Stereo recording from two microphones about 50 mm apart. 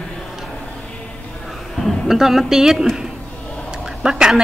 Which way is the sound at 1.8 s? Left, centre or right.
Centre.